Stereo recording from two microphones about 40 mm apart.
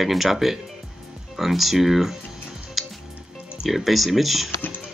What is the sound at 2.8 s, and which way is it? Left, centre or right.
Music, centre.